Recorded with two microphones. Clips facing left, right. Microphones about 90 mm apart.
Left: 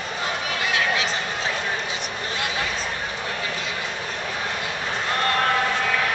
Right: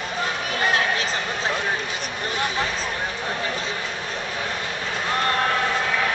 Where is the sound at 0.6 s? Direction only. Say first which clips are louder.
Right 2 dB; 40° right (ahead or behind).